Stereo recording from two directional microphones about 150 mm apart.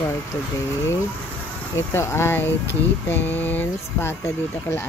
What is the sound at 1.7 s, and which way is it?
Speech, 15° left (ahead or behind).